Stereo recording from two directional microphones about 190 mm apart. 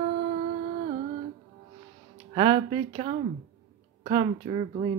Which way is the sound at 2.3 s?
25° right (ahead or behind).